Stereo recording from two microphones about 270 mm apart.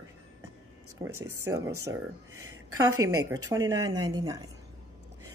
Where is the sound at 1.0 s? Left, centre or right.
Right.